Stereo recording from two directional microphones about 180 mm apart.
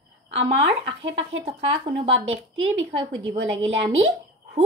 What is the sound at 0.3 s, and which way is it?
Speech, 30° right (ahead or behind).